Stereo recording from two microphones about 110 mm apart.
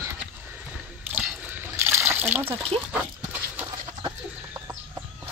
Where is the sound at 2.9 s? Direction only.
10° right (ahead or behind).